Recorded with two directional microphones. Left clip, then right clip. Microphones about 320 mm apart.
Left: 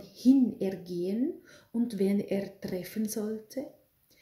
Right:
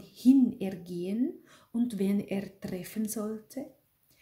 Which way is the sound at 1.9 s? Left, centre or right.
Right.